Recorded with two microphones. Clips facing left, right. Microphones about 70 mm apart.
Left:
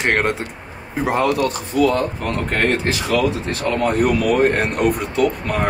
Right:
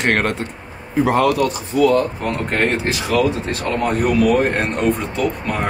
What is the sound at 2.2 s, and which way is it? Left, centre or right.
Speech, centre.